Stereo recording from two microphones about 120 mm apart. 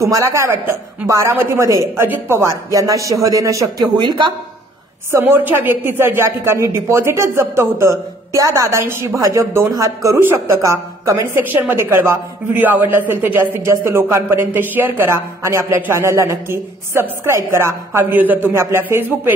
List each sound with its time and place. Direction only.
0.0 s a man's voice: 25° right (ahead or behind)
5.1 s a man's voice: 20° right (ahead or behind)